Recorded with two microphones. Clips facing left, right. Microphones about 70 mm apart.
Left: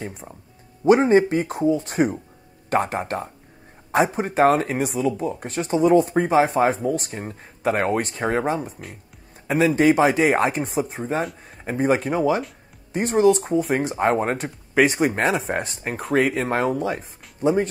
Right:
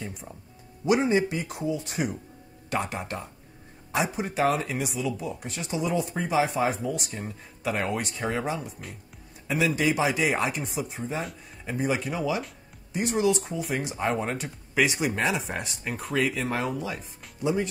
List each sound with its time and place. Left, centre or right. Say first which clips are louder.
0.8 s speech: left 8 dB; left
9.8 s speech: left 8 dB; left